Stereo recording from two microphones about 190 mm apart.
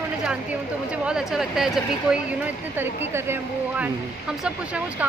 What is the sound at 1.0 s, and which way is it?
Speech, 5° right (ahead or behind).